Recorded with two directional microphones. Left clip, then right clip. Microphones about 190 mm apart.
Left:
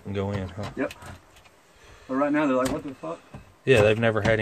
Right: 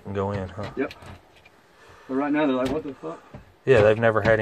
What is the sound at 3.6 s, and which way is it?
Speech, 25° left (ahead or behind).